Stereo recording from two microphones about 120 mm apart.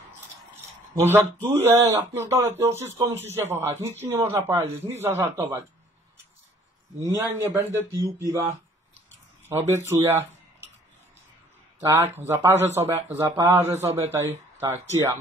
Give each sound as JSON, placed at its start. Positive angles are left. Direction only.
{"t": 0.9, "sound": "speech", "side_deg": -20}
{"t": 7.0, "sound": "speech", "side_deg": -25}
{"t": 9.5, "sound": "speech", "side_deg": -20}
{"t": 11.9, "sound": "speech", "side_deg": -20}